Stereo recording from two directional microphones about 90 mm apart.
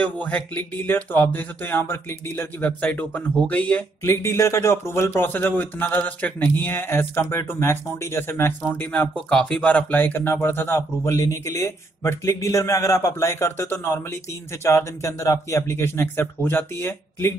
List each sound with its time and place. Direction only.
0.0 s speech: 15° left (ahead or behind)
4.0 s speech: 30° left (ahead or behind)
9.1 s speech: 10° left (ahead or behind); by 17.3 s 25° left (ahead or behind)